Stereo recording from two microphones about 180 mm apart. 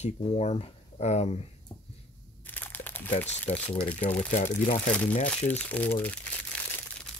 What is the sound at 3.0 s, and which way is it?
Speech, 40° left (ahead or behind).